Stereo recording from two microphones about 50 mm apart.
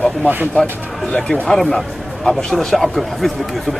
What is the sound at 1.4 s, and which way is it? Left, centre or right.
A man's voice, centre.